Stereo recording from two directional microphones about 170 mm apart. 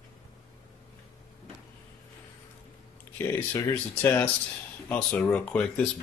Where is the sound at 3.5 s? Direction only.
15° left (ahead or behind).